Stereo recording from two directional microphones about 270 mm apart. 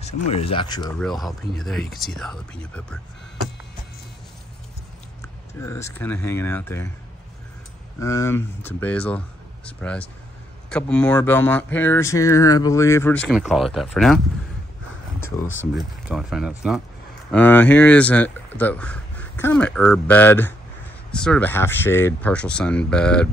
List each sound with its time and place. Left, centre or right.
0.3 s speech: left
0.9 s speech: centre
5.5 s speech: centre
8.0 s speech: centre
15.7 s speech: centre